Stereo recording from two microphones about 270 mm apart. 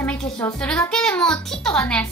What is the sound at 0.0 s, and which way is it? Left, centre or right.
A child's voice, centre.